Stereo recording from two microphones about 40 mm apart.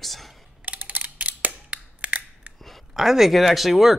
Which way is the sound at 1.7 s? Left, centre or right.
Right.